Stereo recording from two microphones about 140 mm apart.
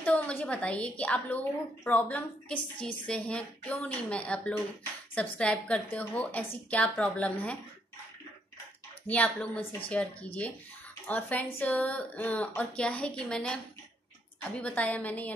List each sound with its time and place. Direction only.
0.0 s a woman's voice: 10° left (ahead or behind)
9.0 s a woman's voice: 10° left (ahead or behind)